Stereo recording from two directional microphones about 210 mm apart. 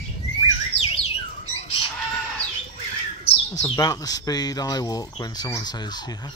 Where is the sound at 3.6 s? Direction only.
15° left (ahead or behind).